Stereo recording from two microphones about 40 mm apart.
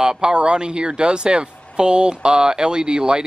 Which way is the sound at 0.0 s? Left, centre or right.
Centre.